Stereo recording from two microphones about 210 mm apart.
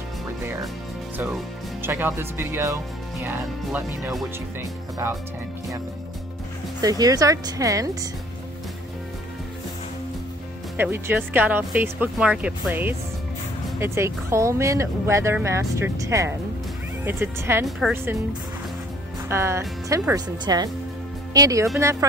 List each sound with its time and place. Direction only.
1.1 s speech: 10° right (ahead or behind)
6.8 s speech: 15° right (ahead or behind)
10.8 s speech: 10° right (ahead or behind)
17.6 s speech: centre (ahead or behind)
19.2 s speech: 10° right (ahead or behind)